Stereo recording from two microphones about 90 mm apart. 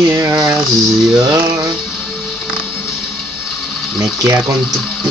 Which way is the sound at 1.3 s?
35° right (ahead or behind).